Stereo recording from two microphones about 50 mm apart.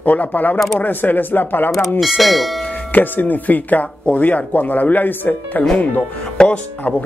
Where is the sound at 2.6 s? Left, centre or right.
Left.